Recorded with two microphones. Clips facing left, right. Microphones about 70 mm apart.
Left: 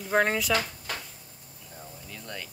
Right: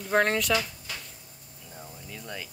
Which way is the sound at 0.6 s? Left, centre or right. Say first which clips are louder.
Left 1 dB; left.